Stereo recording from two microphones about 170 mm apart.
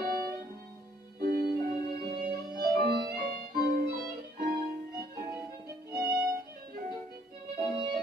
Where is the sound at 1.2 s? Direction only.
65° right (ahead or behind).